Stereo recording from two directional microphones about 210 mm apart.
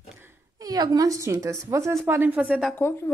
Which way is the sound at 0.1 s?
15° right (ahead or behind).